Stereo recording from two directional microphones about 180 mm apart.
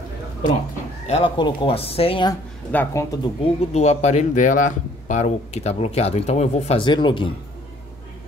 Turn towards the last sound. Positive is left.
turn(degrees=25)  # may be behind; listen again after turning